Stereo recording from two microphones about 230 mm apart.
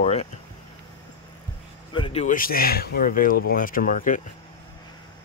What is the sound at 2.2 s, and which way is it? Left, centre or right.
Speech, left.